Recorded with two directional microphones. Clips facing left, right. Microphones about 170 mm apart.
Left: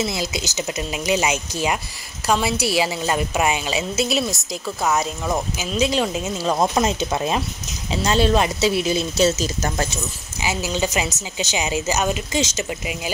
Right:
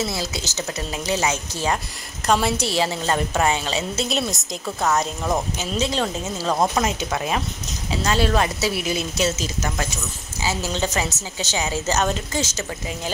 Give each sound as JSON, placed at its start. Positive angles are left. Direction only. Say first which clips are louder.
{"t": 0.1, "sound": "a woman's voice", "louder": "left 2 dB", "side_deg": 15}
{"t": 10.4, "sound": "a woman's voice", "louder": "left 1 dB", "side_deg": 10}